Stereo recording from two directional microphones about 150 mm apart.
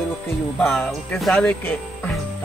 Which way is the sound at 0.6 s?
5° left (ahead or behind).